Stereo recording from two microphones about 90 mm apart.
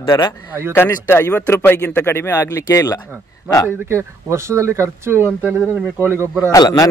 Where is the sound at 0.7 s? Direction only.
25° left (ahead or behind).